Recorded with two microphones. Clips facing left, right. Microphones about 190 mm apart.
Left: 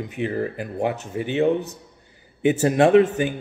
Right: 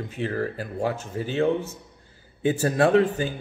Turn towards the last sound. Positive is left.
turn(degrees=20)  # may be behind; listen again after turning